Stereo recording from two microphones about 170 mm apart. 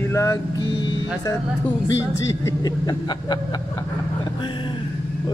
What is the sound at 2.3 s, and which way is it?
Speech, 20° left (ahead or behind).